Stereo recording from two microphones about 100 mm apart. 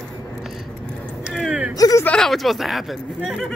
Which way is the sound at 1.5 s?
10° right (ahead or behind).